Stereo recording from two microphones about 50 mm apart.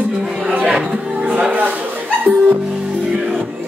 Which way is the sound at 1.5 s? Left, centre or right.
Right.